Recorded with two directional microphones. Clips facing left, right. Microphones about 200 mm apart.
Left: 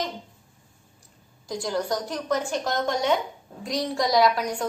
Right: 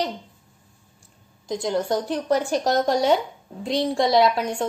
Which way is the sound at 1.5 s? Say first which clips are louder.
Right 4 dB; 25° right (ahead or behind).